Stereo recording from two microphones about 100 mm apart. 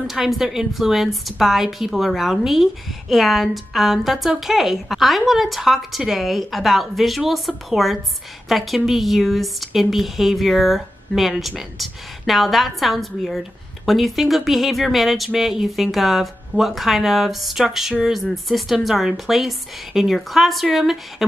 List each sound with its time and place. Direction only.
0.0 s a woman's voice: centre (ahead or behind)